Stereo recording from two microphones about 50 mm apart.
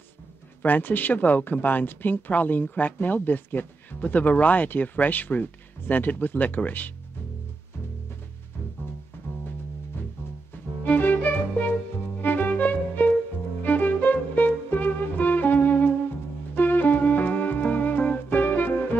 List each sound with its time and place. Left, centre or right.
0.7 s speech: left
10.8 s music: left